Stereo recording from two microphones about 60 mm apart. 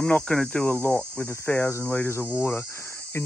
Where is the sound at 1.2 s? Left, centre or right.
Left.